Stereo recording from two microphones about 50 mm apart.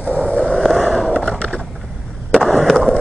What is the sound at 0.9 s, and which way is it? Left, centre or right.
Skateboard, centre.